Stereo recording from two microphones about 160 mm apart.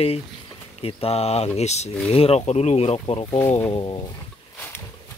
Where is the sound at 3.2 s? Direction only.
25° left (ahead or behind).